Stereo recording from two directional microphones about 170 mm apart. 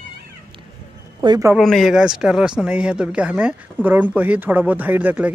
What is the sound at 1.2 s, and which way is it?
Speech, 25° right (ahead or behind).